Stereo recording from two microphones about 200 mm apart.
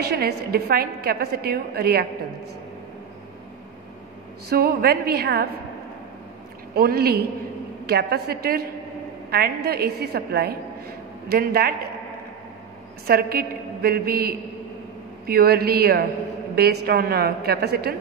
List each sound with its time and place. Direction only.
0.0 s a woman's voice: 55° right (ahead or behind)
4.5 s a woman's voice: 50° right (ahead or behind)
6.7 s a woman's voice: 50° right (ahead or behind)
13.0 s a woman's voice: 50° right (ahead or behind)